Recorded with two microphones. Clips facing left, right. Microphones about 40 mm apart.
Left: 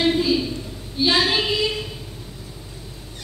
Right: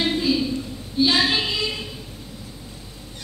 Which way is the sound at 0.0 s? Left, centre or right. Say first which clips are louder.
Left 2 dB; centre.